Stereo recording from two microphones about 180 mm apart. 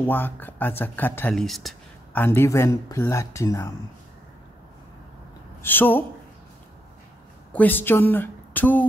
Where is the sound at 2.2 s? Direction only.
15° left (ahead or behind).